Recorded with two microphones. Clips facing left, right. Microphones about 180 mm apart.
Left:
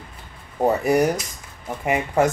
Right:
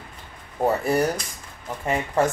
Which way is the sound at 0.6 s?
15° left (ahead or behind).